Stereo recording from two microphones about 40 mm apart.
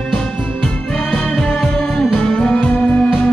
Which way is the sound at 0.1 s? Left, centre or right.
Centre.